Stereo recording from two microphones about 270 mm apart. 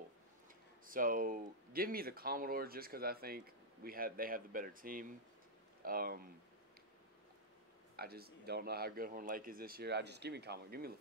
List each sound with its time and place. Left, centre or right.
0.8 s speech: right
7.9 s speech: right